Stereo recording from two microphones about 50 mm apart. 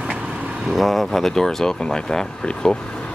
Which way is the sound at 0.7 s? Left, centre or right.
Centre.